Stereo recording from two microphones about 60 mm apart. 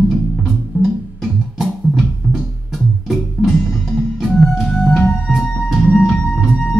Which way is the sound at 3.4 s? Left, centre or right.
Centre.